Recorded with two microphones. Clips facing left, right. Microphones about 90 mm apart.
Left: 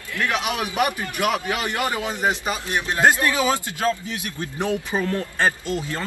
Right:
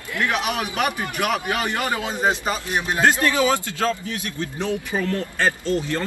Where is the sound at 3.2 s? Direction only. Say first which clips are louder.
Right 2 dB; 20° left (ahead or behind).